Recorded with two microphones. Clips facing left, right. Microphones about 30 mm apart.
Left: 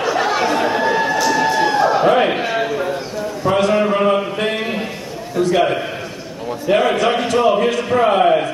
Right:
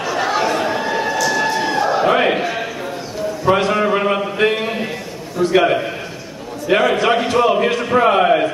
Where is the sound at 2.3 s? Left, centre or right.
Centre.